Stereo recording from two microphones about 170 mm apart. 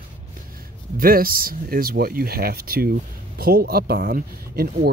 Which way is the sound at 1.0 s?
60° right (ahead or behind).